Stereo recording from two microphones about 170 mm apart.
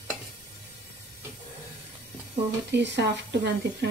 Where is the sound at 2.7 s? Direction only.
90° right.